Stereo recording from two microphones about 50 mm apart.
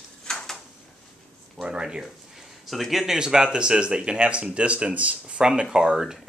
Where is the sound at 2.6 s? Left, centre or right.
Centre.